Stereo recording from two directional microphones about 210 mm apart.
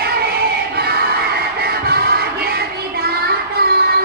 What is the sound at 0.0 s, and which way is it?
Music, 50° right (ahead or behind).